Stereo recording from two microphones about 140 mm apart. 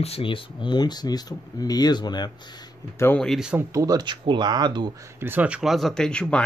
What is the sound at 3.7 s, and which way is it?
Speech, 25° right (ahead or behind).